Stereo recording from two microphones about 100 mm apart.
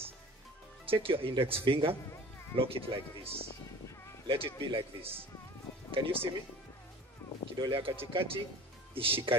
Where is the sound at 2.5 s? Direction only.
70° right (ahead or behind).